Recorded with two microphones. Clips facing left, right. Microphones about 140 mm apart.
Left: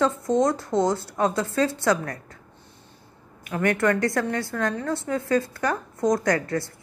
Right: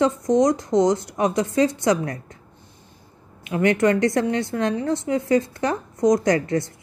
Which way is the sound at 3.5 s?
20° right (ahead or behind).